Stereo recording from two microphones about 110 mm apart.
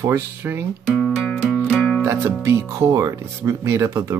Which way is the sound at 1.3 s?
10° left (ahead or behind).